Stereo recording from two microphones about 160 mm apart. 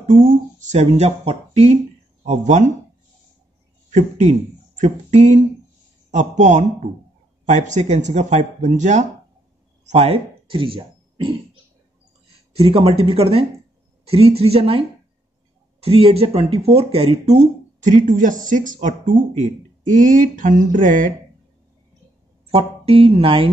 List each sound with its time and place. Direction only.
0.2 s speech: 50° right (ahead or behind)
3.9 s speech: 50° right (ahead or behind); by 10.8 s 35° right (ahead or behind)
12.5 s speech: 35° right (ahead or behind); by 21.1 s 55° right (ahead or behind)
22.5 s speech: 40° right (ahead or behind)